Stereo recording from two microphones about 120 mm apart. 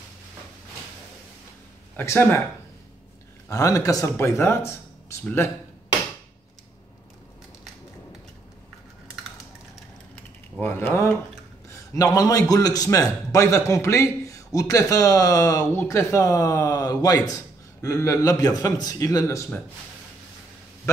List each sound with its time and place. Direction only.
2.0 s a man's voice: 20° left (ahead or behind)
3.4 s a man's voice: 25° left (ahead or behind)
10.6 s speech: 15° left (ahead or behind)
11.7 s a man's voice: 30° left (ahead or behind)